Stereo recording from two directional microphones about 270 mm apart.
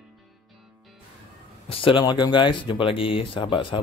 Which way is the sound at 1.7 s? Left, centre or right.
Centre.